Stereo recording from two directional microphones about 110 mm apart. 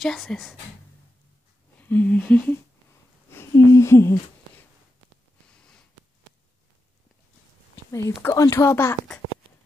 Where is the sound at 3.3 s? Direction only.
25° left (ahead or behind).